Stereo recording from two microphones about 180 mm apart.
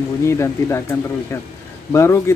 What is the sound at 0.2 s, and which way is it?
Speech, 15° left (ahead or behind).